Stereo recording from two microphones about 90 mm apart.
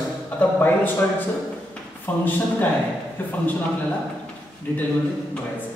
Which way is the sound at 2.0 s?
20° left (ahead or behind).